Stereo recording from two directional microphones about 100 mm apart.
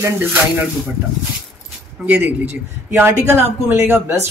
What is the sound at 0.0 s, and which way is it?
Speech, 20° right (ahead or behind).